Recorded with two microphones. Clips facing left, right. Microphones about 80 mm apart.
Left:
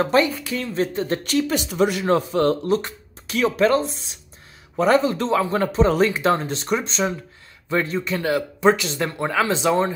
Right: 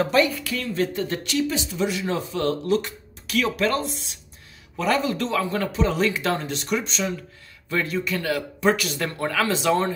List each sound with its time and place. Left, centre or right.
0.0 s speech: left
1.5 s speech: left; by 9.9 s centre